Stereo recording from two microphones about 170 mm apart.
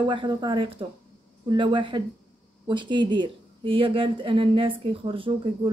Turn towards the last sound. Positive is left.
turn(degrees=-30)  # may be behind; listen again after turning